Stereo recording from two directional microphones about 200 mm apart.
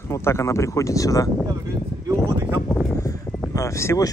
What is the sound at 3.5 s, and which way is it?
Speech, 15° left (ahead or behind).